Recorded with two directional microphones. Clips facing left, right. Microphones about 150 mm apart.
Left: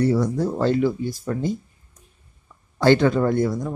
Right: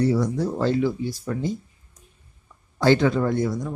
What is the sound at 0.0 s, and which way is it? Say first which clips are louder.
Speech: left 1 dB; 55° left (ahead or behind).